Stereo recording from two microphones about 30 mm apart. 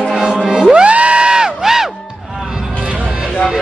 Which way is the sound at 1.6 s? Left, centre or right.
Centre.